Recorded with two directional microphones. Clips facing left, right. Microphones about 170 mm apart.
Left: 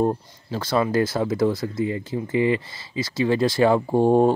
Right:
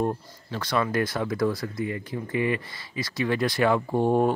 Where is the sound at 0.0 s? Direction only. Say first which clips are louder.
Left 5 dB; 30° left (ahead or behind).